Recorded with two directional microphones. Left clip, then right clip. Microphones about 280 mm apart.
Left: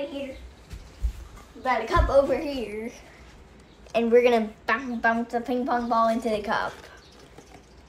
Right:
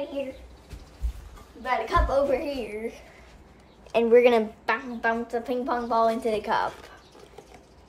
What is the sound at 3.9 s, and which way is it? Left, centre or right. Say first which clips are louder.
A woman's voice: right 1 dB; right.